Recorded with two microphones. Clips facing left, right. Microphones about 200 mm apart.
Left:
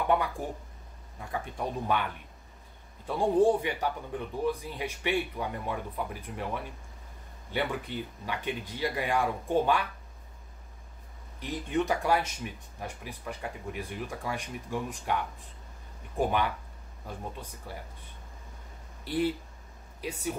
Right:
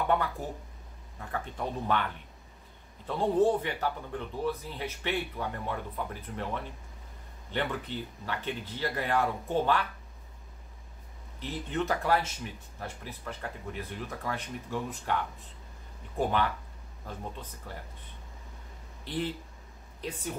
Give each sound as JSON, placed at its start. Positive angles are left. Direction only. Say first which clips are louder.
{"t": 0.1, "sound": "speech", "louder": "left 1 dB", "side_deg": 15}
{"t": 11.3, "sound": "speech", "louder": "left 3 dB", "side_deg": 15}
{"t": 19.0, "sound": "speech", "louder": "left 5 dB", "side_deg": 10}